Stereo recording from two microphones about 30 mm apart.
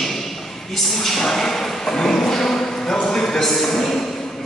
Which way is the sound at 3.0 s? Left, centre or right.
Left.